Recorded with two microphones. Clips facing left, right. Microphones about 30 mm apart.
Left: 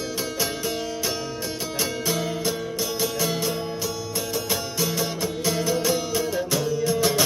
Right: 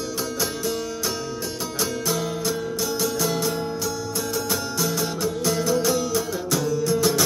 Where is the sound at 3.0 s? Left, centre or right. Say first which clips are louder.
Right 1 dB; centre.